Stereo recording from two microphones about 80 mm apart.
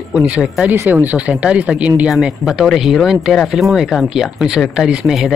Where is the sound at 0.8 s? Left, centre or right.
Right.